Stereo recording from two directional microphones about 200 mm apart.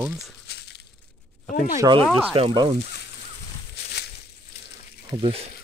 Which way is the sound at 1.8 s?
25° right (ahead or behind).